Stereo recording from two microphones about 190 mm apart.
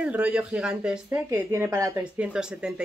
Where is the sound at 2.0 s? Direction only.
5° right (ahead or behind).